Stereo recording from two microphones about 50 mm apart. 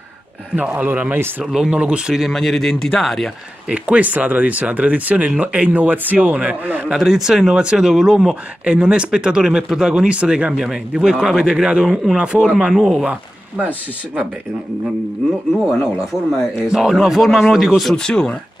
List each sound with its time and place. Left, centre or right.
0.7 s speech: right
1.4 s speech: centre
2.3 s speech: centre
3.6 s speech: right
6.9 s speech: centre
8.6 s speech: right
12.7 s speech: centre
13.0 s speech: right
16.7 s speech: centre
17.9 s speech: centre